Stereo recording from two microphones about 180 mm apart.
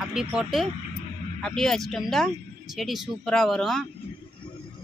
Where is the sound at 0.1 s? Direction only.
5° right (ahead or behind).